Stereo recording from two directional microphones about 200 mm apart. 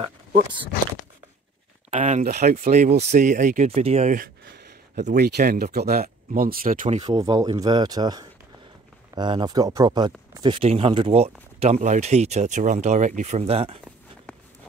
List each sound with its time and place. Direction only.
0.3 s speech: 25° right (ahead or behind)
1.9 s speech: 35° right (ahead or behind)
7.1 s speech: 20° right (ahead or behind)
14.3 s a sound: 5° left (ahead or behind)